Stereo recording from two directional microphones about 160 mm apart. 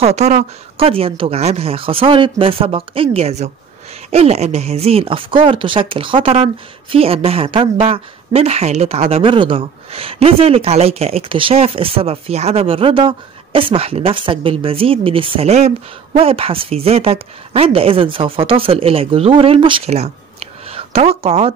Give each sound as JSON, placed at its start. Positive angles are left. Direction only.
{"t": 0.0, "sound": "speech", "side_deg": -45}